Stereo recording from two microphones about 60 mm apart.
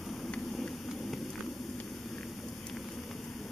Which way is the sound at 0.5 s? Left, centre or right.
Centre.